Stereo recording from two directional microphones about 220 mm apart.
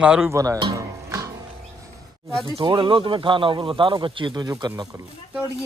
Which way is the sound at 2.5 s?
20° right (ahead or behind).